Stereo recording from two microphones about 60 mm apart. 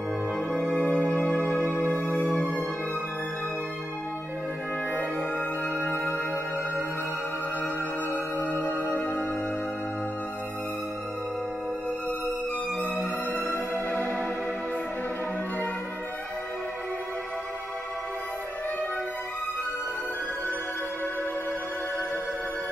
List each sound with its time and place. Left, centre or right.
0.7 s music: centre
1.1 s music: left
5.8 s music: left
8.5 s music: right
13.5 s music: left